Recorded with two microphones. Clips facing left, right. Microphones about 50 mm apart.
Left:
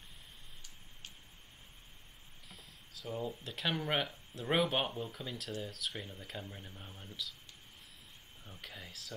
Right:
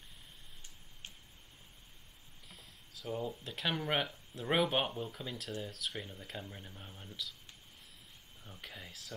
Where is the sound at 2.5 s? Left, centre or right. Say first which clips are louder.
Left 1 dB; centre.